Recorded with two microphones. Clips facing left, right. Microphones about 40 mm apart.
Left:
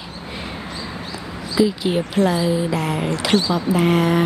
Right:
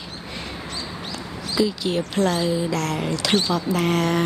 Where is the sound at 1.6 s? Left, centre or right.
Centre.